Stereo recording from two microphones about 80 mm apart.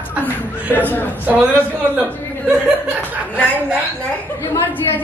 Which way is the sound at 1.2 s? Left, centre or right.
Centre.